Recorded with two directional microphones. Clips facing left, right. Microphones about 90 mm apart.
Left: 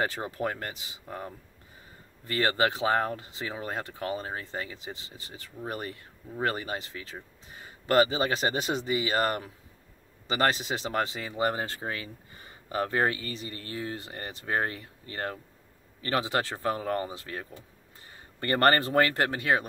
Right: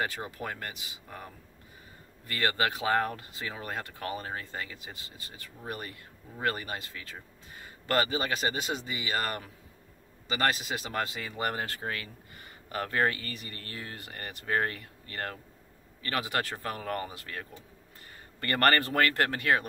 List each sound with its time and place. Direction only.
0.0 s speech: 35° left (ahead or behind)
2.2 s speech: 25° left (ahead or behind)